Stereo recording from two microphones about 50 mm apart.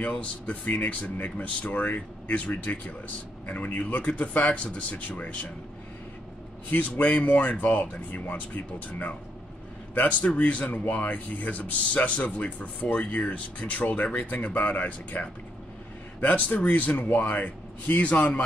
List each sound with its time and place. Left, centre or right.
0.0 s speech: left
6.7 s speech: left
10.3 s speech: left